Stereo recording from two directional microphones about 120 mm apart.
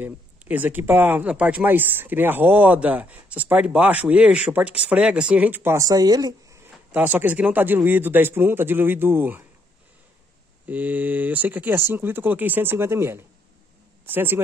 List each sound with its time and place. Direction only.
0.0 s speech: 15° right (ahead or behind); by 6.6 s 35° right (ahead or behind)
6.9 s speech: 15° right (ahead or behind)
10.7 s speech: 15° right (ahead or behind)